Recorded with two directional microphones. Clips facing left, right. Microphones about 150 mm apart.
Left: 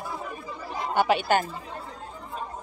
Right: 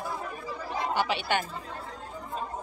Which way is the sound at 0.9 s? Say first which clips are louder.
Left 7 dB; 50° left (ahead or behind).